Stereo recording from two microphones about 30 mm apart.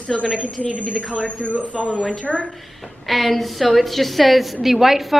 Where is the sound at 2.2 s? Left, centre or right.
Left.